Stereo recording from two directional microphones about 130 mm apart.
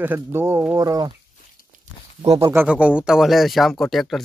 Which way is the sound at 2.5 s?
10° right (ahead or behind).